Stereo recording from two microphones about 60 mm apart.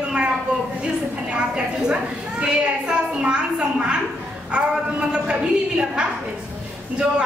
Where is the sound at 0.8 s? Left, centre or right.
Centre.